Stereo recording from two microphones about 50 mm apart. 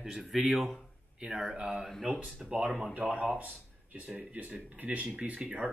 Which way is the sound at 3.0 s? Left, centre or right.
Right.